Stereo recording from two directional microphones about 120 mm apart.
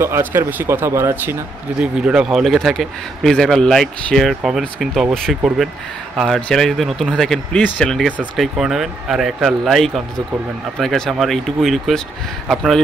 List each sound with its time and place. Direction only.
0.0 s speech: 20° right (ahead or behind)
1.8 s a man's voice: 10° right (ahead or behind)